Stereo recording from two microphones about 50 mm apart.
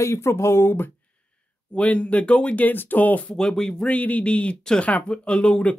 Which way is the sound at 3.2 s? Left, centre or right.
Centre.